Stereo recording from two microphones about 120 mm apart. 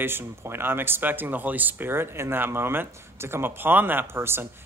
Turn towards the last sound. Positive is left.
turn(degrees=-20)  # may be behind; listen again after turning